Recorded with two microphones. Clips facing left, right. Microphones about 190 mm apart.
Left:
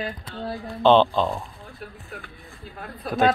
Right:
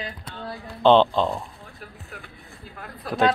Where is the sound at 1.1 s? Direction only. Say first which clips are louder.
Even; 10° left (ahead or behind).